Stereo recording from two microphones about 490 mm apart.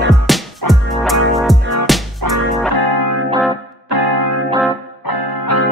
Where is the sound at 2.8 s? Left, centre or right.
Right.